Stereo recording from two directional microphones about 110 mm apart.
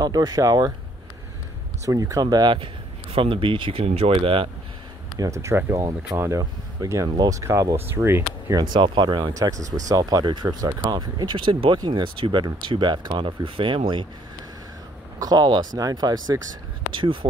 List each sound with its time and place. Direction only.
0.0 s speech: 35° right (ahead or behind)
1.9 s speech: 30° right (ahead or behind); by 4.5 s 55° right (ahead or behind)
5.2 s speech: 30° right (ahead or behind)
8.5 s speech: 35° right (ahead or behind)
8.8 s speech: 45° right (ahead or behind)
9.3 s speech: 30° right (ahead or behind); by 14.0 s 50° right (ahead or behind)
15.1 s speech: 35° right (ahead or behind)
17.0 s speech: 50° right (ahead or behind)